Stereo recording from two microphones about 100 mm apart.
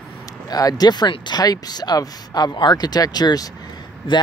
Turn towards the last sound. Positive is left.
turn(degrees=55)  # may be behind; listen again after turning